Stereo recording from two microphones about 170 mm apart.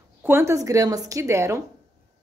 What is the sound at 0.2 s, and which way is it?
A woman's voice, 15° right (ahead or behind).